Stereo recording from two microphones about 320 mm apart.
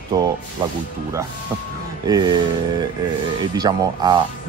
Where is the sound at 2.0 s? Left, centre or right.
Centre.